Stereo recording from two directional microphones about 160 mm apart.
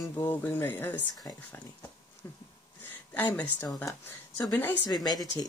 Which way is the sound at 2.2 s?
20° left (ahead or behind).